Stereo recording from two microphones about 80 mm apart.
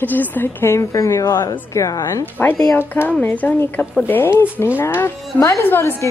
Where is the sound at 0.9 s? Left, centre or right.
Left.